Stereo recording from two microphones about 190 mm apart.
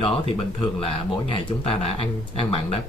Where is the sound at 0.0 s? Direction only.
30° left (ahead or behind).